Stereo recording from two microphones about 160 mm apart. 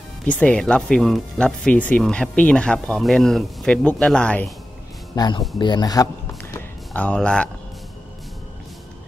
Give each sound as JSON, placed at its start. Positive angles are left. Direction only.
{"t": 0.2, "sound": "speech", "side_deg": 10}
{"t": 5.1, "sound": "speech", "side_deg": 25}
{"t": 6.9, "sound": "speech", "side_deg": 5}